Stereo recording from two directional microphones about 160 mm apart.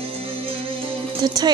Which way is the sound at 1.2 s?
25° right (ahead or behind).